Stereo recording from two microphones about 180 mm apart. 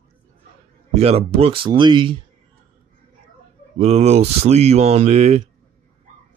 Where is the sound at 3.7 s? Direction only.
35° right (ahead or behind).